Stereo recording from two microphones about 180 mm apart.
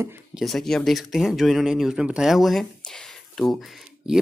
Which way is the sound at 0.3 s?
Centre (ahead or behind).